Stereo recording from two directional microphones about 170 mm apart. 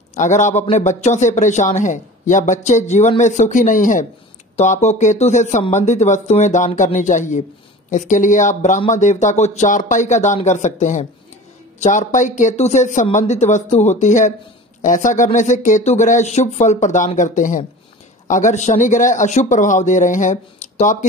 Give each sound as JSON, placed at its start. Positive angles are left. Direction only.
{"t": 0.1, "sound": "a man's voice", "side_deg": 45}